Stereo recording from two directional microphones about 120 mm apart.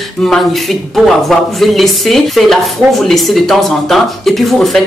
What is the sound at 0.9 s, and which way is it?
Speech, centre (ahead or behind).